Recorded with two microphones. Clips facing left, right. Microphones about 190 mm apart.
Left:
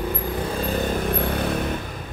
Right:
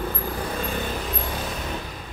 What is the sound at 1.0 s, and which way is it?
Vehicle, 60° left (ahead or behind).